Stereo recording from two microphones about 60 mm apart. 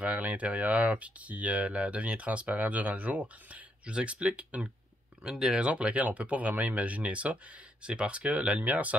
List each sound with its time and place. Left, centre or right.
0.0 s speech: right